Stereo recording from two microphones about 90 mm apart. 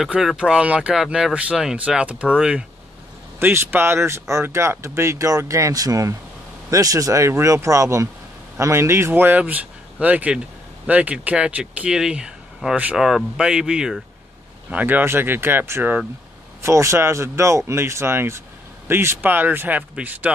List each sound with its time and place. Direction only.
0.0 s speech: centre (ahead or behind)
3.3 s speech: 25° right (ahead or behind); by 14.0 s 10° right (ahead or behind)
14.7 s speech: 20° right (ahead or behind)